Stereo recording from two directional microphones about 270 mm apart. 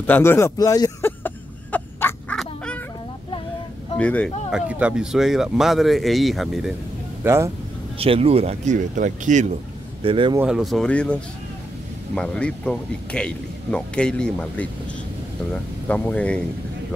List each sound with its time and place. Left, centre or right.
0.0 s a sound: centre
4.0 s speech: centre
8.0 s speech: right
10.4 s speech: centre